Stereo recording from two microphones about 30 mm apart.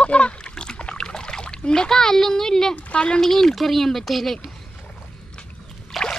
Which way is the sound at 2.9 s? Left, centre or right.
Left.